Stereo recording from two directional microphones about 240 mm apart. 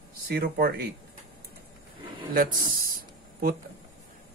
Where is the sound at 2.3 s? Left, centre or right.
Right.